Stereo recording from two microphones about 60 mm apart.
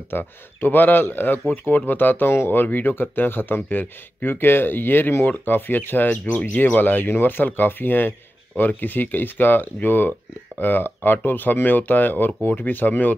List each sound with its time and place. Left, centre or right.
0.1 s speech: left